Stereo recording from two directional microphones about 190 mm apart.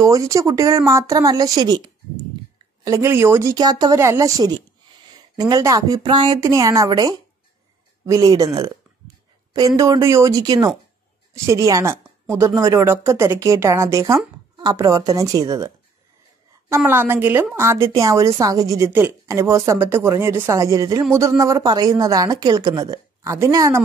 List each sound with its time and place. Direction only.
0.0 s speech: 15° right (ahead or behind)
16.7 s speech: 10° right (ahead or behind)